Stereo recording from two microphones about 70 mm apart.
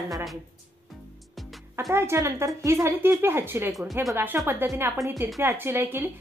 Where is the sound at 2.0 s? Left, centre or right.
Right.